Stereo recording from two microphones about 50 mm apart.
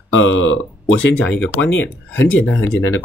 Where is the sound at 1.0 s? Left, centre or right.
Left.